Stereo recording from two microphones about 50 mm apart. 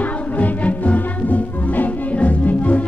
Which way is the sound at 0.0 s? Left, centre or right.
Left.